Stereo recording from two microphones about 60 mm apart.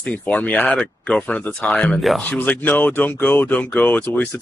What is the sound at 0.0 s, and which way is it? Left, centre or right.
Speech, left.